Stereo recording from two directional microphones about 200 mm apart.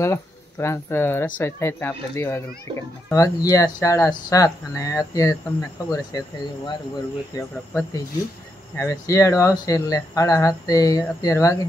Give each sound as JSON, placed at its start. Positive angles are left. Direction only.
{"t": 0.0, "sound": "speech", "side_deg": 15}
{"t": 8.7, "sound": "speech", "side_deg": 15}